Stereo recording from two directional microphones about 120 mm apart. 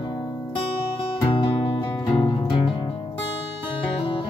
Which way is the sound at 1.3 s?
45° left (ahead or behind).